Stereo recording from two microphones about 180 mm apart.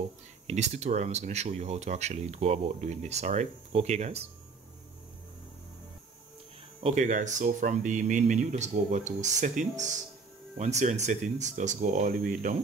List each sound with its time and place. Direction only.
0.5 s speech: 40° right (ahead or behind)
6.8 s speech: 40° right (ahead or behind)